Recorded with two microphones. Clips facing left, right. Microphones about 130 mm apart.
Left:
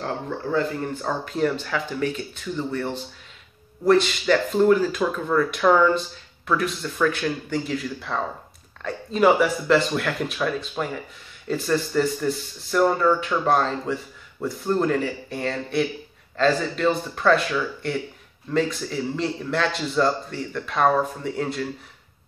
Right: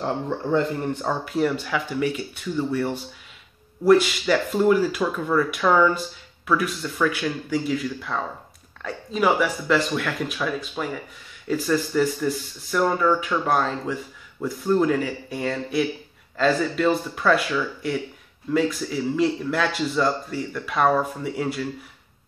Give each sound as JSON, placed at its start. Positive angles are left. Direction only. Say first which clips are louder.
{"t": 0.0, "sound": "a man's voice", "louder": "right 2 dB", "side_deg": -20}
{"t": 1.0, "sound": "a man's voice", "louder": "even", "side_deg": -10}